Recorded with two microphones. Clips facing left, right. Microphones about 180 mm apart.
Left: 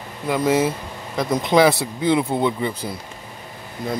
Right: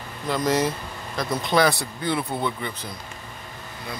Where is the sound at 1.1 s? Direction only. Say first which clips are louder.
Left 5 dB; 20° left (ahead or behind).